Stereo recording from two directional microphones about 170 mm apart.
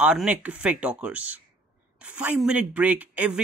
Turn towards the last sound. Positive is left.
turn(degrees=-10)  # may be behind; listen again after turning